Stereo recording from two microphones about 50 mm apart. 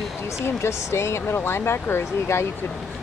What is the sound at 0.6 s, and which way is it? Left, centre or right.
Speech, left.